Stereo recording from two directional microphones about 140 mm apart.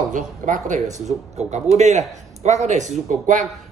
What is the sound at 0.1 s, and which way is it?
A man's voice, 65° right (ahead or behind).